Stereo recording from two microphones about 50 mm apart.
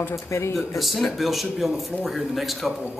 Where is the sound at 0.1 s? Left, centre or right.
Left.